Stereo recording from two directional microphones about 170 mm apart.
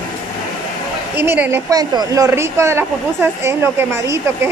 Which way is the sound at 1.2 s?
15° right (ahead or behind).